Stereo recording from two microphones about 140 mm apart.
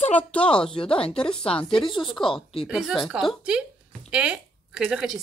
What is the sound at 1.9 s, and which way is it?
Speech, 35° left (ahead or behind).